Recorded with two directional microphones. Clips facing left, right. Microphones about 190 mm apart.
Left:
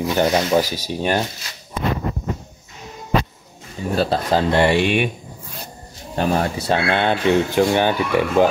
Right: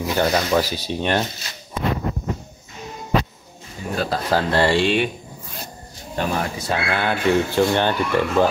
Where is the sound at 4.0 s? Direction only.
25° left (ahead or behind).